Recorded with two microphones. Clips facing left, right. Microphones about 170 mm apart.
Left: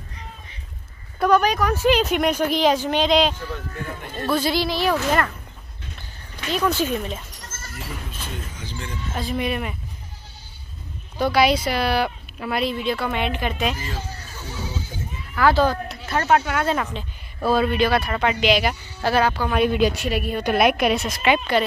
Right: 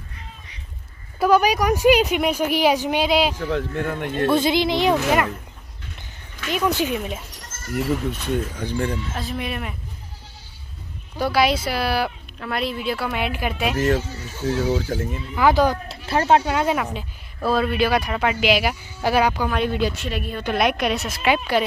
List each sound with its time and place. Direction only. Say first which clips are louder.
1.2 s speech: right 1 dB; 10° right (ahead or behind)
3.3 s speech: right 8 dB; 90° right
4.3 s a woman's voice: right 2 dB; 20° right (ahead or behind)
6.5 s speech: even; 15° right (ahead or behind)
8.5 s speech: right 10 dB; 55° right (ahead or behind)
9.1 s a woman's voice: left 3 dB; centre (ahead or behind)
11.1 s a woman's voice: left 1 dB; 5° right (ahead or behind)
13.7 s speech: right 12 dB; 75° right (ahead or behind)
15.3 s speech: right 1 dB; 15° right (ahead or behind)
15.9 s speech: right 2 dB; 30° right (ahead or behind)
16.6 s speech: right 1 dB; 10° right (ahead or behind)
17.4 s speech: left 1 dB; centre (ahead or behind)
19.5 s a woman's voice: left 3 dB; 10° left (ahead or behind); by 21.6 s 5° right (ahead or behind)